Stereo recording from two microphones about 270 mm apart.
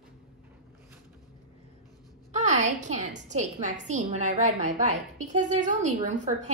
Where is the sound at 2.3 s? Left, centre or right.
Right.